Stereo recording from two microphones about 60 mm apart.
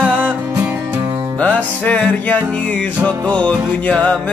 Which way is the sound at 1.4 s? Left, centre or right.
Left.